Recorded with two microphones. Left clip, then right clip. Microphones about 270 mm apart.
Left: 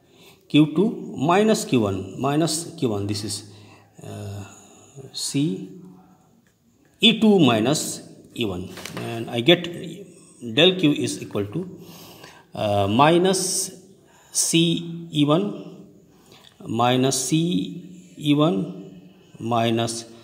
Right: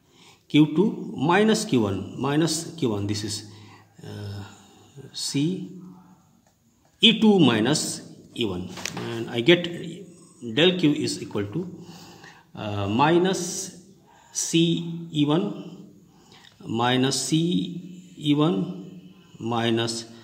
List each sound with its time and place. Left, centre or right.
0.5 s a man's voice: centre
4.0 s a sound: centre
5.1 s a man's voice: centre
7.0 s a man's voice: centre
16.6 s a man's voice: centre